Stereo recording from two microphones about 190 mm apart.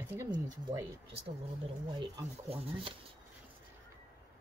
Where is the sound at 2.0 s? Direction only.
25° right (ahead or behind).